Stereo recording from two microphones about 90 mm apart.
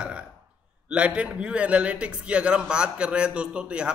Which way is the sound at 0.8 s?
15° right (ahead or behind).